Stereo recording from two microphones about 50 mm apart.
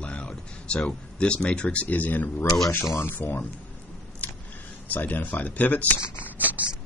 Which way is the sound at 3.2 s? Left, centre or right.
Left.